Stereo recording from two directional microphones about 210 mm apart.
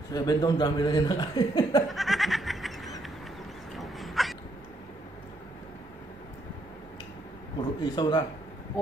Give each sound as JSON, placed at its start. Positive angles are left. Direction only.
{"t": 0.1, "sound": "speech", "side_deg": 20}
{"t": 1.9, "sound": "goat", "side_deg": 0}
{"t": 3.7, "sound": "a sound", "side_deg": 0}
{"t": 7.8, "sound": "speech", "side_deg": 20}